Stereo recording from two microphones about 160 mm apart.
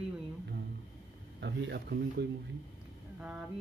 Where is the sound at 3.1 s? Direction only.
10° right (ahead or behind).